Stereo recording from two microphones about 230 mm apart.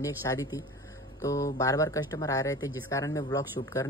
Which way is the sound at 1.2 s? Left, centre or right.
Centre.